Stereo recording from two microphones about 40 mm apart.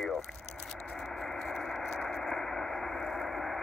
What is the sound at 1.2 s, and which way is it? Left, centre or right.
Radio, centre.